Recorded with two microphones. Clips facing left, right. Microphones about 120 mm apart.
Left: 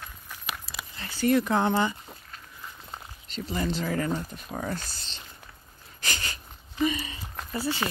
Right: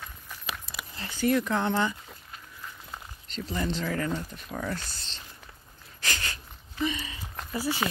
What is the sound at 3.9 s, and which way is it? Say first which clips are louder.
Speech: left 2 dB; 20° left (ahead or behind).